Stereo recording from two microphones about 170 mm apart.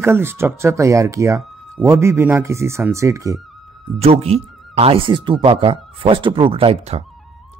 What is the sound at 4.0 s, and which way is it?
Speech, 35° right (ahead or behind).